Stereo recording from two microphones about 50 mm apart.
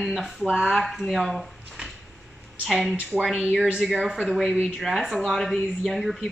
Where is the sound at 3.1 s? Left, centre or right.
Centre.